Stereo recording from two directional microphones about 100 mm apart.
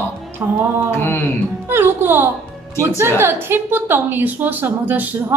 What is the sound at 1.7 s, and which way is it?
A woman's voice, 20° right (ahead or behind).